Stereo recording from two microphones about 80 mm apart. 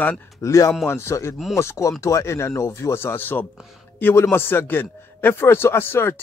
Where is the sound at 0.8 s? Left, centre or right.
Left.